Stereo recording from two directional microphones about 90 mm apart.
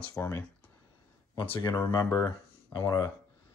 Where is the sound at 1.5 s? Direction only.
55° left (ahead or behind).